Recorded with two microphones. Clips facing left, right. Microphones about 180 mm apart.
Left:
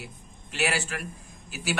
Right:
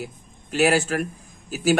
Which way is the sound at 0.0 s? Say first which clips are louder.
Right 8 dB; 45° right (ahead or behind).